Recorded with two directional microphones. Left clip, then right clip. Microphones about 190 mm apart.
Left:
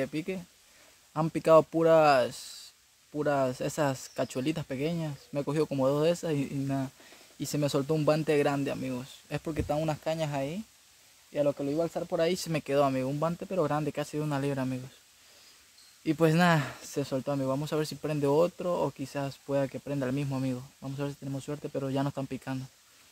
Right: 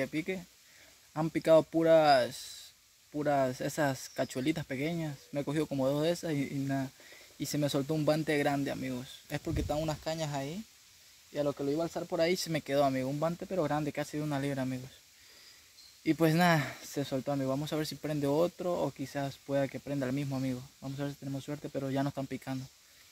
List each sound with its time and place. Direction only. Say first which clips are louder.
0.0 s speech: left 1 dB; 20° left (ahead or behind)
16.0 s speech: left 2 dB; 20° left (ahead or behind)